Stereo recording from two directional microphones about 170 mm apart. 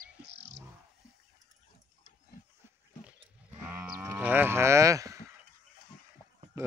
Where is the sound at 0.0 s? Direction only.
85° right.